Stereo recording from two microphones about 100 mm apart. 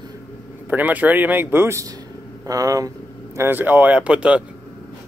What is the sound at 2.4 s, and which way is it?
Speech, 35° right (ahead or behind).